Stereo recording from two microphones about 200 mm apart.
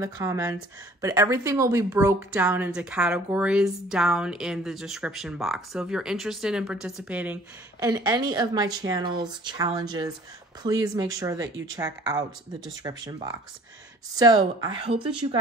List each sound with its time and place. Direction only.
0.0 s a woman's voice: 15° right (ahead or behind)